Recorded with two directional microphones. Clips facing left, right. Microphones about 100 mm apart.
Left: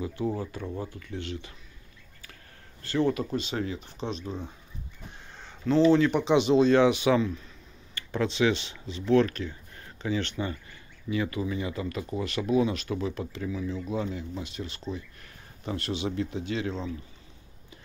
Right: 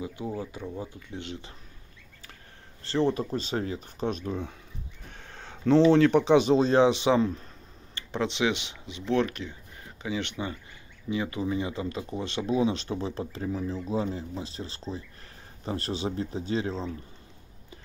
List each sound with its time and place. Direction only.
0.0 s speech: 15° right (ahead or behind)
2.8 s speech: 30° right (ahead or behind); by 4.6 s 60° right (ahead or behind)
5.6 s speech: 80° right
6.3 s speech: 40° right (ahead or behind)
7.9 s speech: 20° right (ahead or behind)